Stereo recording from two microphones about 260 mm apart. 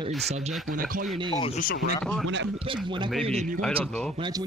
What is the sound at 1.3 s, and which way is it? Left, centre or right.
Speech, left.